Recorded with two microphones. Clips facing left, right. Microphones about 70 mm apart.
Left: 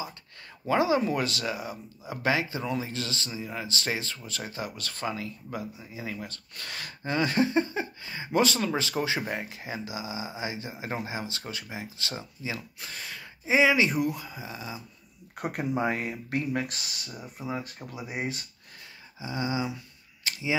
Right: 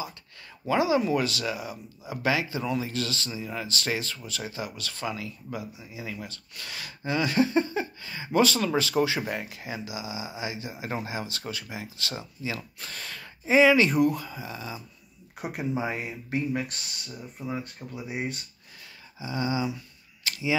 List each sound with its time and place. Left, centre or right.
0.7 s speech: left
15.3 s speech: left
17.1 s speech: centre
19.1 s speech: left
20.2 s camera: left